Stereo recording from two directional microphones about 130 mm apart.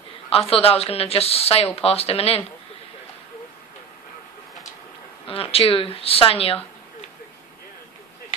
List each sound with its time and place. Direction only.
0.3 s a woman's voice: 45° left (ahead or behind)
5.2 s a woman's voice: 45° left (ahead or behind)